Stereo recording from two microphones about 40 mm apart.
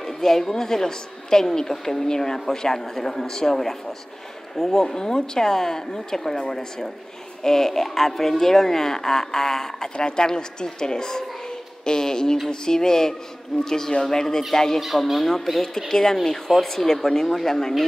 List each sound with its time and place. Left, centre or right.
0.0 s a woman's voice: centre
9.9 s a woman's voice: left
14.8 s a woman's voice: centre